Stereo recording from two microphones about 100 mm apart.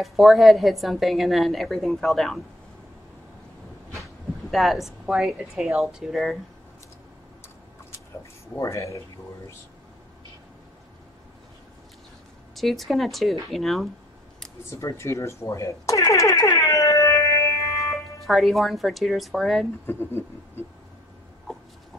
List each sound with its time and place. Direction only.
0.0 s a woman's voice: centre (ahead or behind)
4.5 s a woman's voice: centre (ahead or behind)
8.5 s speech: 30° left (ahead or behind)
12.5 s a woman's voice: centre (ahead or behind)
14.7 s speech: 30° left (ahead or behind)
17.9 s a woman's voice: centre (ahead or behind)
19.9 s speech: 25° left (ahead or behind)
21.5 s a sound: 5° left (ahead or behind)